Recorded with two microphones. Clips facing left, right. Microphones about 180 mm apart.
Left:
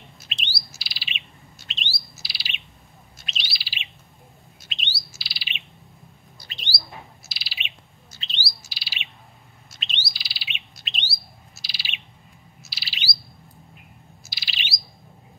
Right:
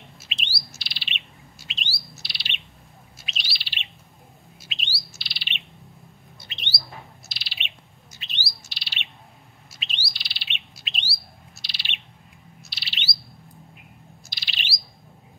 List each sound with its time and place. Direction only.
0.2 s bird: centre (ahead or behind)
6.4 s bird: 25° right (ahead or behind)
6.7 s bird: centre (ahead or behind)
8.1 s bird: 20° right (ahead or behind)
8.6 s bird: centre (ahead or behind)
14.2 s bird: 5° left (ahead or behind)